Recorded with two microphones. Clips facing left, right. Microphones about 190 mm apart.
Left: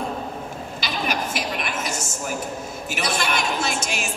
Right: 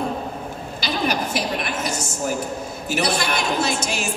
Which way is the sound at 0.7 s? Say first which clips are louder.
Right 4 dB; 35° right (ahead or behind).